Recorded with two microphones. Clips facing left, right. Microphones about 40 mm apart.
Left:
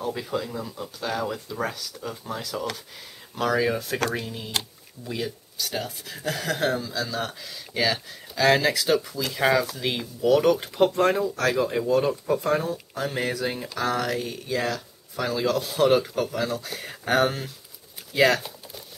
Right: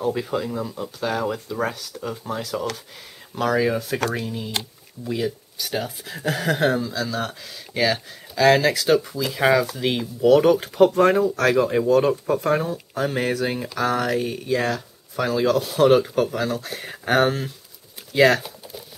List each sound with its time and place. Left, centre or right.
0.0 s speech: centre
6.9 s speech: centre
15.8 s speech: centre
18.2 s speech: centre